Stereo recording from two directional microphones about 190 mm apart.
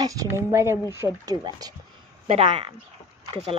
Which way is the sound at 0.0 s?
15° right (ahead or behind).